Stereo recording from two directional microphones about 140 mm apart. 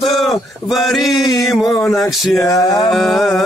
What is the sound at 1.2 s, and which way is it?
Music, 30° left (ahead or behind).